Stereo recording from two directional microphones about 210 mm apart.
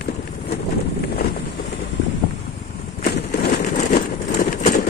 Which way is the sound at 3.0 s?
50° left (ahead or behind).